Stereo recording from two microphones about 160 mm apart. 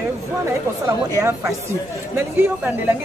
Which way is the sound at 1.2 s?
20° right (ahead or behind).